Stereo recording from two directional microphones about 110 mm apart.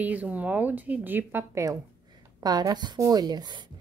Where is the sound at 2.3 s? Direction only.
35° right (ahead or behind).